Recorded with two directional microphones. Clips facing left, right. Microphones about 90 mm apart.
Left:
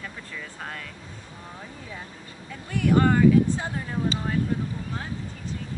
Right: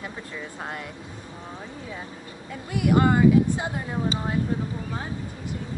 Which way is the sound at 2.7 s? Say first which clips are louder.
Even; 10° right (ahead or behind).